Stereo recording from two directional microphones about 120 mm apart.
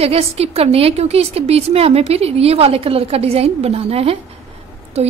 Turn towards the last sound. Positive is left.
turn(degrees=-65)  # may be behind; listen again after turning